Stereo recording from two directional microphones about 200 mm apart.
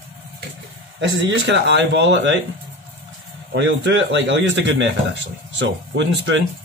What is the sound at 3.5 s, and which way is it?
Speech, 65° right (ahead or behind).